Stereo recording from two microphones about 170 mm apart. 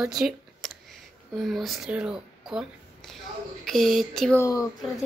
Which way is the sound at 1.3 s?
Centre (ahead or behind).